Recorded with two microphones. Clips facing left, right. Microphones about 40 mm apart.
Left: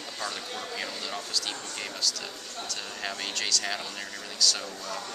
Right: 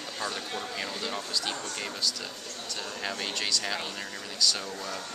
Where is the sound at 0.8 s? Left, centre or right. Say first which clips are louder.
Right 1 dB; centre.